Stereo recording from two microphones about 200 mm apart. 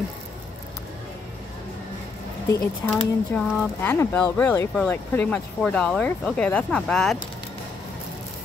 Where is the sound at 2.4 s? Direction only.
15° left (ahead or behind).